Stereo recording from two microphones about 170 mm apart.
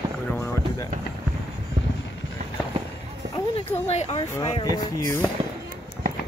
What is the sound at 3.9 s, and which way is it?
Speech, 40° left (ahead or behind).